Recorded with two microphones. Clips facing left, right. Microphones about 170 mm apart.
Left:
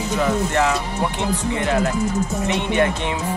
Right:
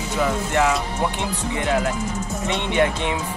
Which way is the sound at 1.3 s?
10° right (ahead or behind).